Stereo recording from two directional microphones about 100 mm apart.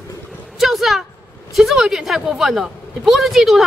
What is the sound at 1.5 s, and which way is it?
A woman's voice, 5° right (ahead or behind).